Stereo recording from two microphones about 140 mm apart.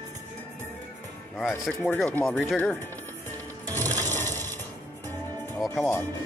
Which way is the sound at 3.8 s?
15° left (ahead or behind).